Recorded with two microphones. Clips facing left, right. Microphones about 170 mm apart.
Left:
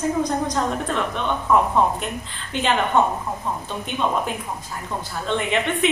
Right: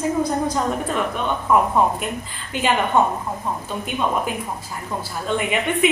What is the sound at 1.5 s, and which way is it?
A woman's voice, 10° right (ahead or behind).